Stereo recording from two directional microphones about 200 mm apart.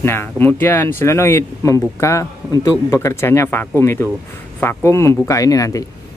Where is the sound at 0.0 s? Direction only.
10° left (ahead or behind).